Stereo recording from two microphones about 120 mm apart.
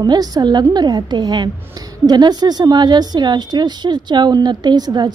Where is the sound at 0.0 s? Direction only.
35° right (ahead or behind).